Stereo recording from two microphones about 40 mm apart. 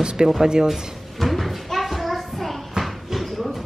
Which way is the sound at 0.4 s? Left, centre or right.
Centre.